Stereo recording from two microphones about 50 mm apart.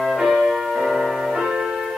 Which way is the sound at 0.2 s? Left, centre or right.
Centre.